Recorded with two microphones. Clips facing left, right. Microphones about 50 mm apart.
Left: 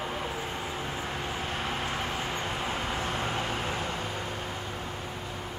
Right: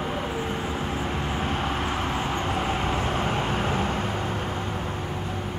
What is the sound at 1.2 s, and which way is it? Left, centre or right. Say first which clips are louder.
Vehicle: right 6 dB; right.